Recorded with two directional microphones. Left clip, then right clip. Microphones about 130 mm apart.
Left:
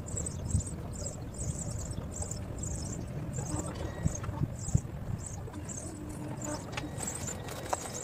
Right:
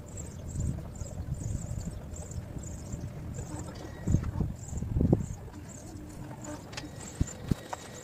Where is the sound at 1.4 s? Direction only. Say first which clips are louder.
Left 5 dB; centre (ahead or behind).